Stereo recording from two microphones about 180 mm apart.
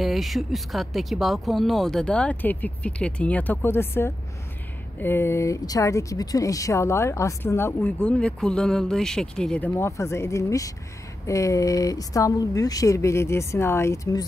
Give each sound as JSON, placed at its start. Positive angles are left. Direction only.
{"t": 0.0, "sound": "speech", "side_deg": 0}